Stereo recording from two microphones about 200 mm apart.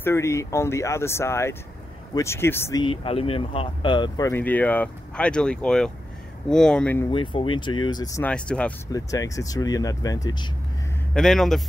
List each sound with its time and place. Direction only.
0.0 s speech: 15° left (ahead or behind)
2.8 s speech: 25° left (ahead or behind)
4.3 s speech: 10° left (ahead or behind)
7.1 s speech: 25° left (ahead or behind)
8.3 s speech: 5° left (ahead or behind)
8.9 s speech: 15° left (ahead or behind)
11.1 s speech: centre (ahead or behind)